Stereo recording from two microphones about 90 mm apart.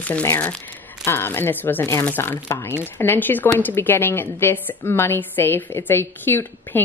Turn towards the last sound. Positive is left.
turn(degrees=25)  # may be behind; listen again after turning